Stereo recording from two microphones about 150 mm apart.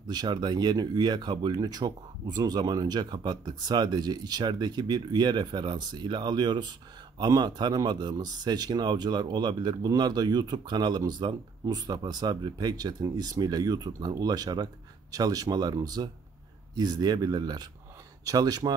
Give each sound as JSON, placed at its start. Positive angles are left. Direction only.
{"t": 0.0, "sound": "speech", "side_deg": -25}